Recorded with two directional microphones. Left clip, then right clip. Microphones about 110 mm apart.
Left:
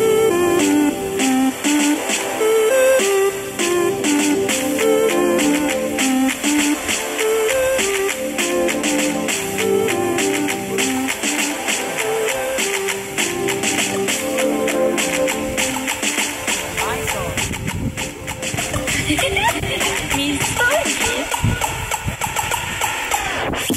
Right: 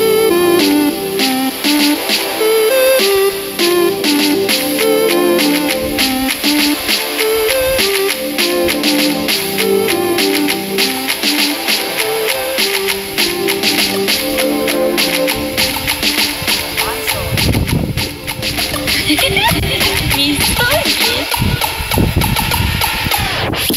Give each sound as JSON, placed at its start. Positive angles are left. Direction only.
{"t": 0.0, "sound": "music", "side_deg": -20}
{"t": 13.2, "sound": "music", "side_deg": -15}
{"t": 19.0, "sound": "music", "side_deg": -25}